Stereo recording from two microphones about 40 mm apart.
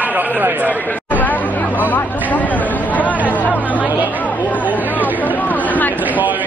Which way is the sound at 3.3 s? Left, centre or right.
Left.